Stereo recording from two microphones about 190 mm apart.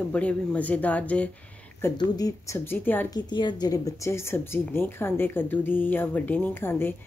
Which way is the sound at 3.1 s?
20° left (ahead or behind).